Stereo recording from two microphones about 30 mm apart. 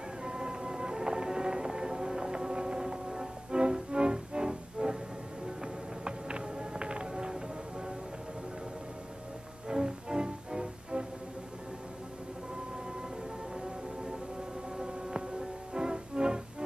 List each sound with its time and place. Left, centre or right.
0.2 s music: right
9.7 s music: right
14.8 s music: right